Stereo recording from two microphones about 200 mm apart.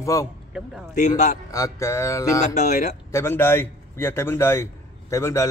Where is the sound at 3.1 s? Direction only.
10° left (ahead or behind).